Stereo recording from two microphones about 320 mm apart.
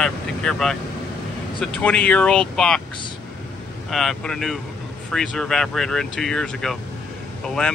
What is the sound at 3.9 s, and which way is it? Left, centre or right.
Speech, centre.